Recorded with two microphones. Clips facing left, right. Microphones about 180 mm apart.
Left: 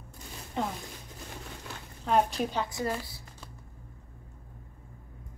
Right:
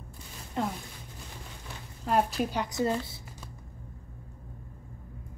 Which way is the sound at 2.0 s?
5° right (ahead or behind).